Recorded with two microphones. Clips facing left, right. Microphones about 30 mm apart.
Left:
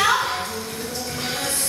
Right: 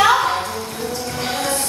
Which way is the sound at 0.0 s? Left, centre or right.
Centre.